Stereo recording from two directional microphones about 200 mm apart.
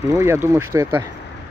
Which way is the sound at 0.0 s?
15° right (ahead or behind).